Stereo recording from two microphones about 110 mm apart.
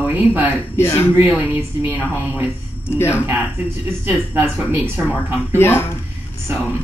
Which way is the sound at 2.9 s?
20° left (ahead or behind).